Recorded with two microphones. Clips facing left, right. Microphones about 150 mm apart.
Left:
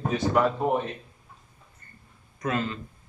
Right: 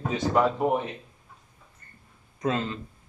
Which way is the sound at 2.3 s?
25° right (ahead or behind).